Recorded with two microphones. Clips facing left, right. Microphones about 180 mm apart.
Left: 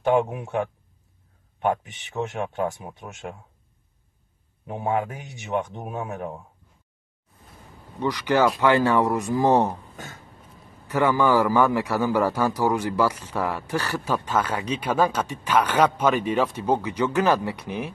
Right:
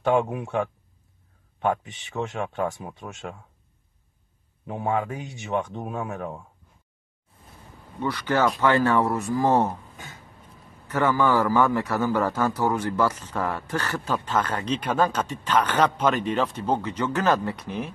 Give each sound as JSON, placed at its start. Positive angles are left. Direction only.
{"t": 0.3, "sound": "a man's voice", "side_deg": 15}
{"t": 4.6, "sound": "a man's voice", "side_deg": 20}
{"t": 8.0, "sound": "a man's voice", "side_deg": 15}
{"t": 9.9, "sound": "a sound", "side_deg": 45}
{"t": 10.9, "sound": "a man's voice", "side_deg": 15}